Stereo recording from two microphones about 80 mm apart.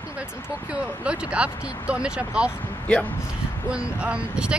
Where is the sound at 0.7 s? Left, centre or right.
Centre.